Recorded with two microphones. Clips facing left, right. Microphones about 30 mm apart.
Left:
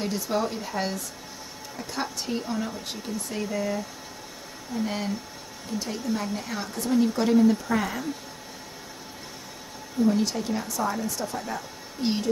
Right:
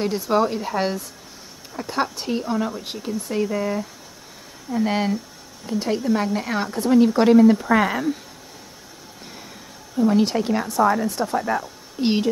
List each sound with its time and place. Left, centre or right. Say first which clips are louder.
0.0 s speech: right 7 dB; right
4.8 s speech: right 9 dB; right
10.0 s speech: right 6 dB; right
11.3 s speech: right 9 dB; right